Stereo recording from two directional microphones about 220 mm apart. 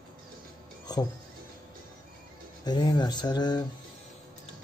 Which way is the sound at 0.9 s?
20° left (ahead or behind).